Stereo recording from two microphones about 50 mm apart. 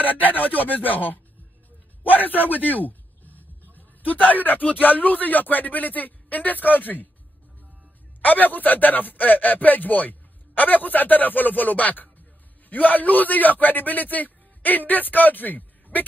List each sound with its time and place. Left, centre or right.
0.0 s speech: left
2.6 s a sound: left
3.7 s speech: left
8.2 s a man's voice: left